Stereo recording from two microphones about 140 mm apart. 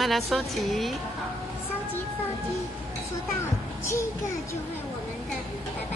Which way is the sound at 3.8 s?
20° left (ahead or behind).